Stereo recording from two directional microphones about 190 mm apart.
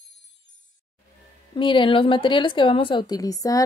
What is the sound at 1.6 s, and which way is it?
Speech, 25° left (ahead or behind).